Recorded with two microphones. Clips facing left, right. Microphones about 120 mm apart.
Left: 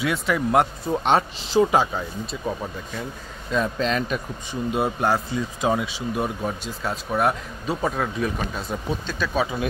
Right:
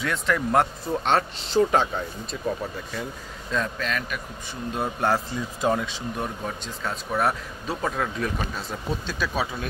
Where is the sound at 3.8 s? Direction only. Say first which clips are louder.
Left 6 dB; 25° left (ahead or behind).